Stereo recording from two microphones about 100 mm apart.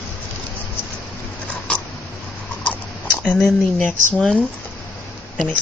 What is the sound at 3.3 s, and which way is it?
Speech, 5° left (ahead or behind).